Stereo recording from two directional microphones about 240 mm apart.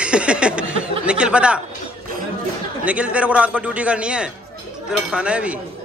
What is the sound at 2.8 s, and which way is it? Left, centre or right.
A man's voice, centre.